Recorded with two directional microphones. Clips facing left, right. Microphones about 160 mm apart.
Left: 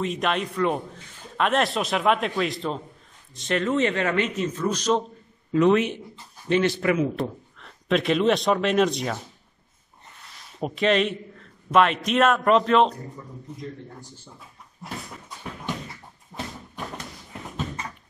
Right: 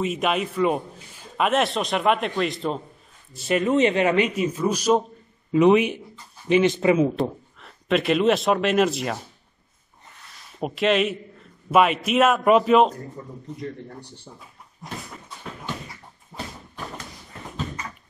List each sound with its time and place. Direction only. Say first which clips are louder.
0.0 s a man's voice: right 2 dB; 5° right (ahead or behind); by 7.1 s 25° right (ahead or behind)
7.2 s speech: right 3 dB; 5° right (ahead or behind)
10.6 s a man's voice: right 1 dB; centre (ahead or behind)
16.3 s a sound: left 1 dB; 5° right (ahead or behind)